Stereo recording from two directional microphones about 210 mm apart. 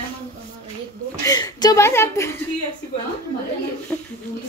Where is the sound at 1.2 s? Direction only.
20° left (ahead or behind).